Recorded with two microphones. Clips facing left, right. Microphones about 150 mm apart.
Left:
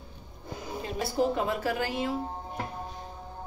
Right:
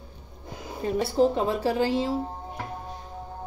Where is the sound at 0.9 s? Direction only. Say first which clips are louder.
Right 5 dB; 30° right (ahead or behind).